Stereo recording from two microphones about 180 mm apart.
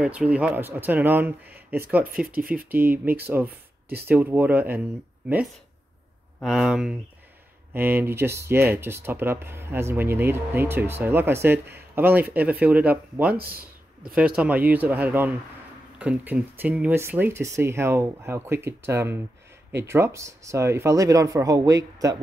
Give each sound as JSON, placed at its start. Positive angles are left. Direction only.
{"t": 0.0, "sound": "speech", "side_deg": -5}
{"t": 2.1, "sound": "speech", "side_deg": -50}
{"t": 2.5, "sound": "speech", "side_deg": -10}
{"t": 6.4, "sound": "speech", "side_deg": 0}